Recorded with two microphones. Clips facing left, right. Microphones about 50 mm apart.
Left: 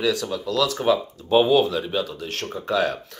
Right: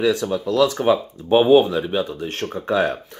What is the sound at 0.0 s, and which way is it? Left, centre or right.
Speech, right.